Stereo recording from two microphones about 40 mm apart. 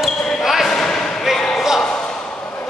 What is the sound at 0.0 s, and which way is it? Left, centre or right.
Basketball bounce, centre.